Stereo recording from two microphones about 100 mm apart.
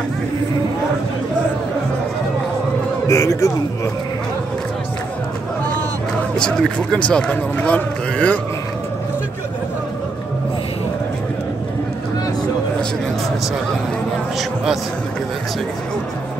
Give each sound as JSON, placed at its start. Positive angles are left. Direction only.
{"t": 3.1, "sound": "a man's voice", "side_deg": 35}
{"t": 6.3, "sound": "speech", "side_deg": 5}